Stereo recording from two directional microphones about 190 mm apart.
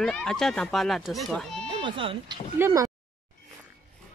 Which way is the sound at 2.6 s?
15° right (ahead or behind).